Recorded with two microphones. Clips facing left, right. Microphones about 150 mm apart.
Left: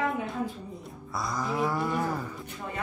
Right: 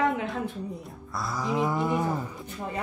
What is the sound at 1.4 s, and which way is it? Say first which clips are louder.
Speech: right 2 dB; 15° right (ahead or behind).